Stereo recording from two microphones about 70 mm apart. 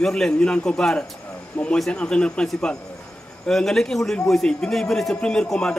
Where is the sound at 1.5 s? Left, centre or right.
Left.